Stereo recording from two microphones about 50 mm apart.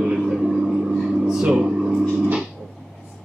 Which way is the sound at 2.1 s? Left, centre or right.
Right.